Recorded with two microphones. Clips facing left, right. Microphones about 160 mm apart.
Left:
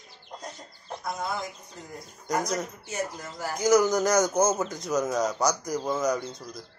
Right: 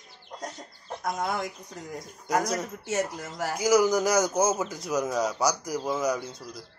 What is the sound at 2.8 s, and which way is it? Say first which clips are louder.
Speech: right 4 dB; 90° right.